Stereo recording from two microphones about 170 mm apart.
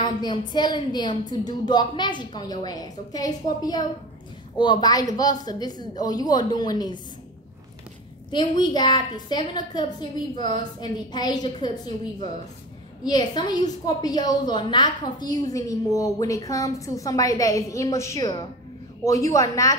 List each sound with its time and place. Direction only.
0.0 s a woman's voice: 25° left (ahead or behind)
8.3 s a woman's voice: 25° left (ahead or behind)